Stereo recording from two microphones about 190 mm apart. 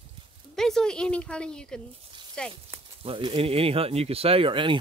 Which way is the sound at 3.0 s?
30° right (ahead or behind).